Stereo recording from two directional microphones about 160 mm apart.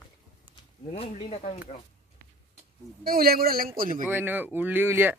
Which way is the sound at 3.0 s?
65° right (ahead or behind).